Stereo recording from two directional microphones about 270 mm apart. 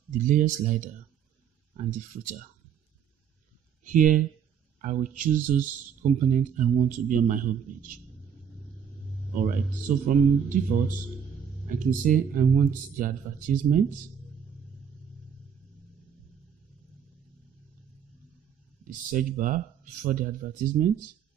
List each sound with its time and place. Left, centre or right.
0.1 s speech: right
3.8 s speech: right
9.3 s speech: right
11.8 s speech: right
18.9 s speech: right